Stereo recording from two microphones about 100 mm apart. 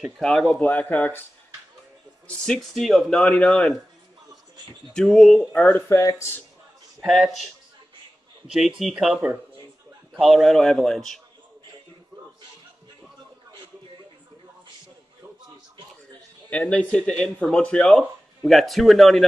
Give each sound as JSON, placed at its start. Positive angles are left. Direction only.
{"t": 0.2, "sound": "speech", "side_deg": 5}
{"t": 0.7, "sound": "speech", "side_deg": 15}
{"t": 2.2, "sound": "speech", "side_deg": 5}
{"t": 4.9, "sound": "speech", "side_deg": 5}
{"t": 5.7, "sound": "speech", "side_deg": 25}
{"t": 7.0, "sound": "speech", "side_deg": 0}
{"t": 8.5, "sound": "speech", "side_deg": -5}
{"t": 16.4, "sound": "speech", "side_deg": 10}